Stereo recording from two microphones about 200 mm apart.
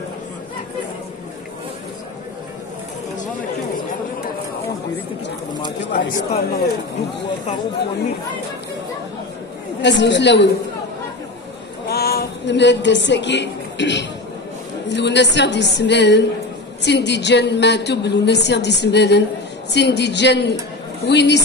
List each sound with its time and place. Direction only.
5.9 s speech: 40° left (ahead or behind)
9.8 s a woman's voice: 60° left (ahead or behind)
11.9 s a woman's voice: 50° left (ahead or behind)